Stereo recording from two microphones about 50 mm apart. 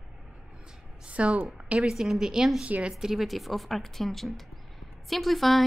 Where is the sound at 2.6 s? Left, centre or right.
Right.